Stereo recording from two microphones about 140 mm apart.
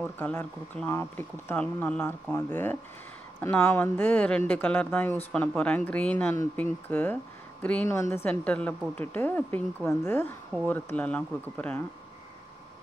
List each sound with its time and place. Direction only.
0.0 s speech: 10° left (ahead or behind)